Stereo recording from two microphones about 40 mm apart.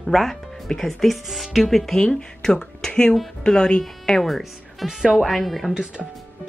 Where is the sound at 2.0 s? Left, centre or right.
Centre.